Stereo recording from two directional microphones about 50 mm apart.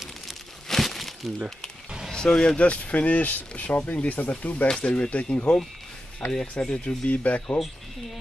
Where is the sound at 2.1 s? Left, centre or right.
Centre; by 4.6 s left.